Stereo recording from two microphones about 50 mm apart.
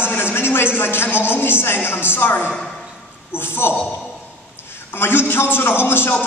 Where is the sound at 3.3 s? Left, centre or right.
Left.